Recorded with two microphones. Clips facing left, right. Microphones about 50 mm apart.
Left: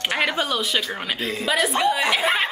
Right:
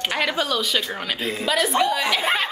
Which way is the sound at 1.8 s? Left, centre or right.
Centre.